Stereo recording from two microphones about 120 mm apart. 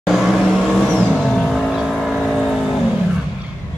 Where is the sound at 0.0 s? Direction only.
5° right (ahead or behind).